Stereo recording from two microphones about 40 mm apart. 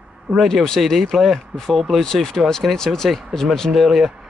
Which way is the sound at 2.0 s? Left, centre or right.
Centre.